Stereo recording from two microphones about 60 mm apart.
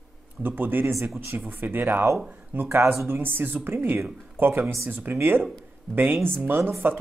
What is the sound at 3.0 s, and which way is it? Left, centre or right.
Speech, right.